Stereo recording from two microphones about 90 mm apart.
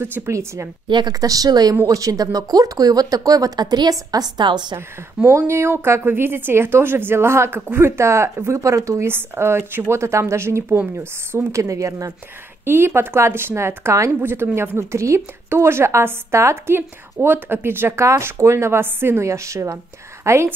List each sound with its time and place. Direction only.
0.0 s a woman's voice: 30° right (ahead or behind)
0.8 s speech: 60° right (ahead or behind)
1.1 s speech: 40° right (ahead or behind)
4.7 s a woman's voice: 30° right (ahead or behind)